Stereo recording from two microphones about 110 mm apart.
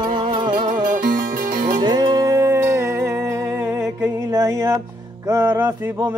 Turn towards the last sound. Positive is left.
turn(degrees=-20)  # may be behind; listen again after turning